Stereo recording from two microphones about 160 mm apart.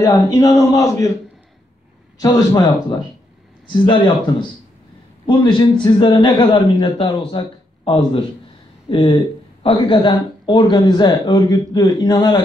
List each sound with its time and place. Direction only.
0.0 s speech: 20° left (ahead or behind)
2.1 s speech: 25° left (ahead or behind)
3.6 s a man's voice: 30° left (ahead or behind)